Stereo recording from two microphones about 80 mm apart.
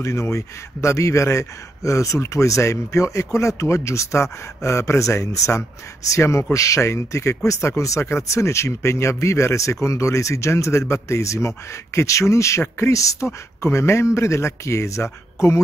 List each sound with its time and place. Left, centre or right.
0.0 s a man's voice: left